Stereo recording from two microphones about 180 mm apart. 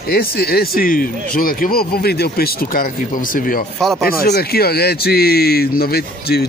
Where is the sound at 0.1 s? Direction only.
55° left (ahead or behind).